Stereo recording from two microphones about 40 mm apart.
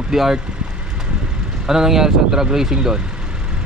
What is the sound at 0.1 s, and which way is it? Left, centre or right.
Speech, centre.